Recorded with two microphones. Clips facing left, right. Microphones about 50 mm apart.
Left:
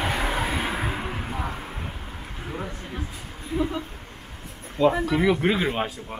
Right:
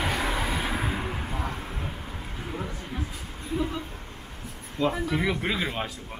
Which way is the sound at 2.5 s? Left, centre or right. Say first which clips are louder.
Left 2 dB; centre.